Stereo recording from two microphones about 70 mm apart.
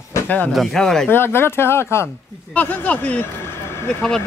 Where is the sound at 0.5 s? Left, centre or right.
Centre.